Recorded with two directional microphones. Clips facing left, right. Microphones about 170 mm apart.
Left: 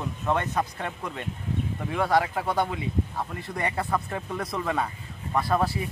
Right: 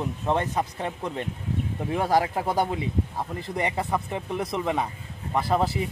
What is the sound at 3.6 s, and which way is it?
Speech, 20° right (ahead or behind).